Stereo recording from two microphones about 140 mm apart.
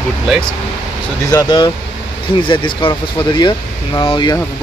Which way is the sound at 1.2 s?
30° left (ahead or behind).